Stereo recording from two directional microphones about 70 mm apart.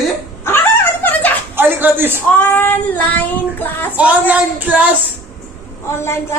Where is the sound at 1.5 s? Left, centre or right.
Right.